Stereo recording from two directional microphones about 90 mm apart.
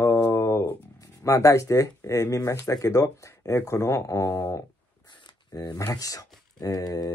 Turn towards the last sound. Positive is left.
turn(degrees=45)  # may be behind; listen again after turning